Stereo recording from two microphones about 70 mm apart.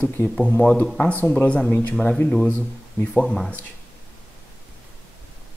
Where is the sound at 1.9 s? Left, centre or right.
Centre.